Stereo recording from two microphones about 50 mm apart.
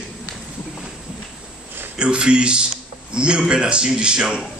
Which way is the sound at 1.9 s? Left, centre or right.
Centre.